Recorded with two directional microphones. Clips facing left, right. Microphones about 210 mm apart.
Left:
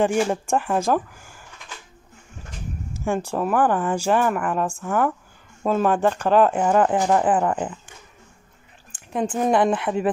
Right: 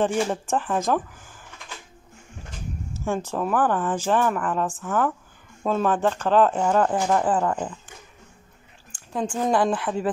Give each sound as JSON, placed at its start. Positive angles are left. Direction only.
{"t": 0.0, "sound": "speech", "side_deg": 10}
{"t": 2.9, "sound": "speech", "side_deg": 15}
{"t": 8.9, "sound": "a sound", "side_deg": 20}
{"t": 9.3, "sound": "speech", "side_deg": 20}